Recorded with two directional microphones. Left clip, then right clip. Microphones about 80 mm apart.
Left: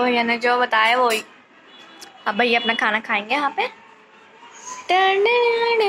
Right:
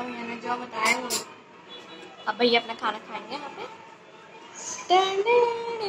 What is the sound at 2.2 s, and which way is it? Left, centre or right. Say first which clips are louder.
A woman's voice: left 5 dB; left.